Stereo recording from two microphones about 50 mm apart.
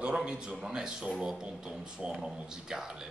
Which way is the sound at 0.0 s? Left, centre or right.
Centre.